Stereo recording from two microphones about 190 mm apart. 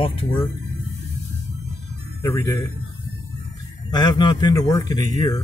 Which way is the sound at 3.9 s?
20° left (ahead or behind).